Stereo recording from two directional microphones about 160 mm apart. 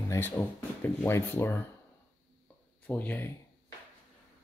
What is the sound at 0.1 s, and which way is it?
Speech, 15° left (ahead or behind).